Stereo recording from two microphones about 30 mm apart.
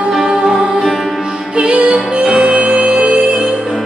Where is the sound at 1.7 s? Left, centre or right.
Right.